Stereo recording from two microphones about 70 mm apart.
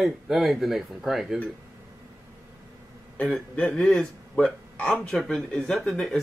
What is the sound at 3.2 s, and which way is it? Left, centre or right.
Speech, centre.